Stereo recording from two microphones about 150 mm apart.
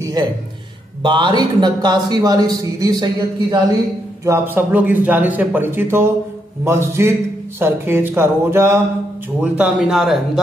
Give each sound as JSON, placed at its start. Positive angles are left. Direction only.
{"t": 0.0, "sound": "a man's voice", "side_deg": -25}
{"t": 4.2, "sound": "a man's voice", "side_deg": -15}